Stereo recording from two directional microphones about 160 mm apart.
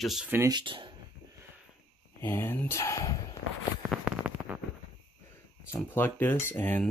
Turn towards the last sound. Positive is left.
turn(degrees=10)  # may be behind; listen again after turning